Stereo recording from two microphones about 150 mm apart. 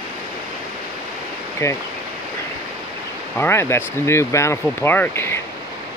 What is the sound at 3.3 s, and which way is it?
Speech, 15° left (ahead or behind).